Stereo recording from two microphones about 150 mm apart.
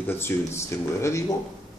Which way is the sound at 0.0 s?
15° left (ahead or behind).